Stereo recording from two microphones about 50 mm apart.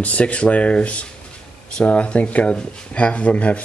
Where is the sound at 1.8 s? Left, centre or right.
Left.